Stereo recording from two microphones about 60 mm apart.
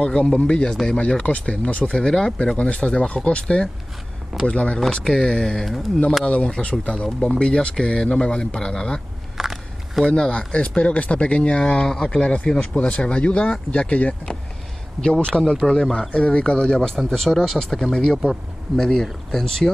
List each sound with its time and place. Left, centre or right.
0.0 s speech: centre
7.1 s speech: centre
9.4 s walk: centre
10.0 s speech: centre
12.7 s speech: centre
15.0 s speech: centre